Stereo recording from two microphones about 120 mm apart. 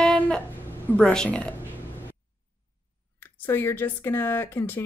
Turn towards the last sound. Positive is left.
turn(degrees=20)  # may be behind; listen again after turning